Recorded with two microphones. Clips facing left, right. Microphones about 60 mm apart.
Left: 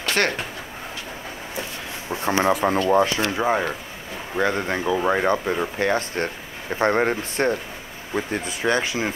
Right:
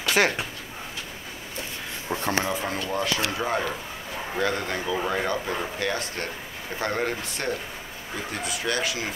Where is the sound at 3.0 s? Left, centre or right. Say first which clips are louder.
Left 5 dB; left.